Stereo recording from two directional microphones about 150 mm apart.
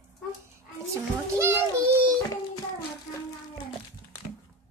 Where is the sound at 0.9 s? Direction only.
15° right (ahead or behind).